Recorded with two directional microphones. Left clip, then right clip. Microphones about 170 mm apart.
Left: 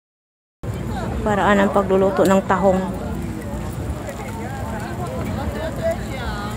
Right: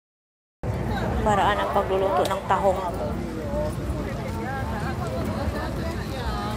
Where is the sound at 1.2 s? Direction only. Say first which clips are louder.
Left 5 dB; 30° left (ahead or behind).